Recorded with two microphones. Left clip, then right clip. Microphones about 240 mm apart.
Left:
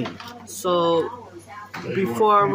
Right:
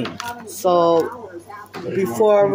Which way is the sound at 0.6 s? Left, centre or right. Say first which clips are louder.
Right 5 dB; centre.